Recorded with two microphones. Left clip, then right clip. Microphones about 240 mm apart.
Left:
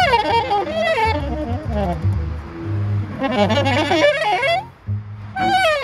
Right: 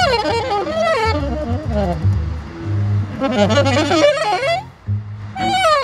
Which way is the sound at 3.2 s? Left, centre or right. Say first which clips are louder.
Right 2 dB; right.